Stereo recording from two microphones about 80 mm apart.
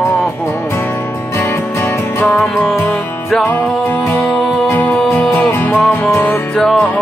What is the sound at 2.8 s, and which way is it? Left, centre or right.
Music, centre.